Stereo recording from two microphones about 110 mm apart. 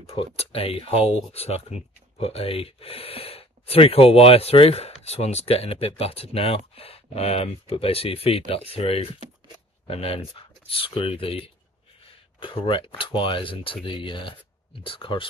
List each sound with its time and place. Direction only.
0.0 s speech: 60° left (ahead or behind)